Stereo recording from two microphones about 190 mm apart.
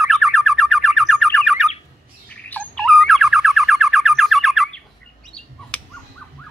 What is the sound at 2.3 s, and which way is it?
Bird, 10° left (ahead or behind).